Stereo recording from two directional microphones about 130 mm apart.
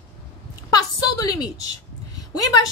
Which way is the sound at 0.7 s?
30° left (ahead or behind).